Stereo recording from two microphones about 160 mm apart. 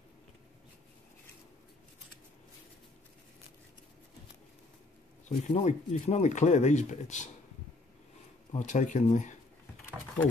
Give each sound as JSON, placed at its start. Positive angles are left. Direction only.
{"t": 5.5, "sound": "speech", "side_deg": 45}
{"t": 8.5, "sound": "speech", "side_deg": 50}